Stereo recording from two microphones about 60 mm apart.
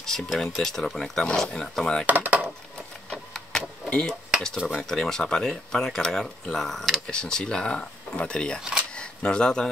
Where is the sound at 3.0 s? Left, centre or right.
Centre.